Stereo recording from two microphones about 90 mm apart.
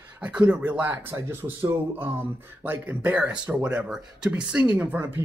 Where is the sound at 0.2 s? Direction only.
15° right (ahead or behind).